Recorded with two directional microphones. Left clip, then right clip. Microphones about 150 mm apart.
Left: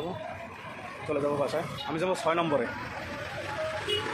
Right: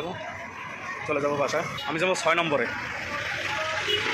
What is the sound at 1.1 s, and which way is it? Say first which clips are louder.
Speech: right 3 dB; 10° left (ahead or behind).